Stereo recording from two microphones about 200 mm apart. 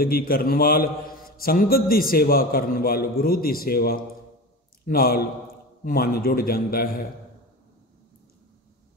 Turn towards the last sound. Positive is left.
turn(degrees=45)  # may be behind; listen again after turning